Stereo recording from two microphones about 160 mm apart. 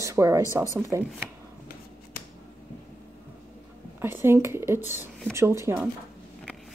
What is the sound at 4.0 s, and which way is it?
Speech, 15° right (ahead or behind).